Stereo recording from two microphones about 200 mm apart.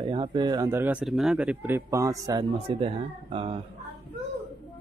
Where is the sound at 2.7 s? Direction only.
30° right (ahead or behind).